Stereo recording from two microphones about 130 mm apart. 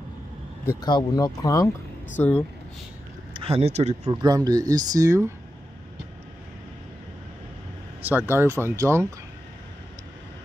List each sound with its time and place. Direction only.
0.8 s speech: 35° left (ahead or behind)
2.1 s speech: 10° left (ahead or behind)
3.3 s speech: 50° right (ahead or behind)
4.1 s speech: 30° right (ahead or behind)
8.0 s speech: 15° right (ahead or behind)